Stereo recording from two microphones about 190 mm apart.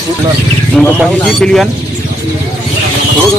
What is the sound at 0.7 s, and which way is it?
Speech, centre (ahead or behind).